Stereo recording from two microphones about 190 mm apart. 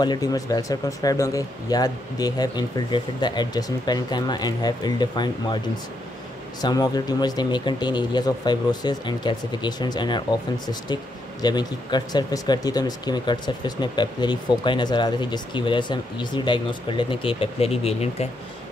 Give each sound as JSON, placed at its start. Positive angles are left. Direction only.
{"t": 0.0, "sound": "speech", "side_deg": 20}
{"t": 6.6, "sound": "speech", "side_deg": 20}
{"t": 11.4, "sound": "speech", "side_deg": 20}